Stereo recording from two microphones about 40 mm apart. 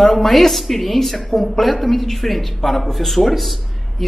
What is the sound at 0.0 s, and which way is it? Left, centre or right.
Speech, centre.